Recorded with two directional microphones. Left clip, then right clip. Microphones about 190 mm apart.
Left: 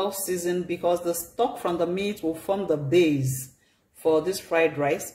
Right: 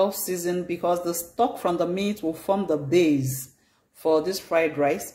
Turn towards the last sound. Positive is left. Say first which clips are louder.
# right 1 dB
turn(degrees=-15)  # may be behind; listen again after turning